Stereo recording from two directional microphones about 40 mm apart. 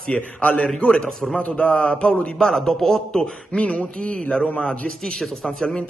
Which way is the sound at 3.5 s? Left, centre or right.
Left.